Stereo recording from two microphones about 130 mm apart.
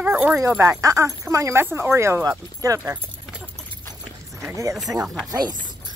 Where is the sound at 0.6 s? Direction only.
25° right (ahead or behind).